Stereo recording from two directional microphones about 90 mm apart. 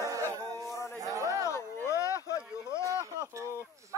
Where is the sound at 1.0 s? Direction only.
35° right (ahead or behind).